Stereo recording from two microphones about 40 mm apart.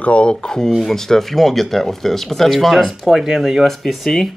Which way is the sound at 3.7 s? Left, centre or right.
Centre.